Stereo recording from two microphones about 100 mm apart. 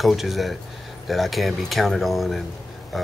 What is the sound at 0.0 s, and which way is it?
Speech, centre (ahead or behind).